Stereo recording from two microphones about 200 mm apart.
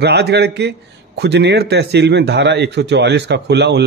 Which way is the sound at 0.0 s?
55° right (ahead or behind).